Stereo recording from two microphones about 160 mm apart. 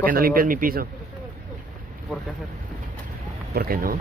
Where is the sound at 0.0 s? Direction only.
65° right (ahead or behind).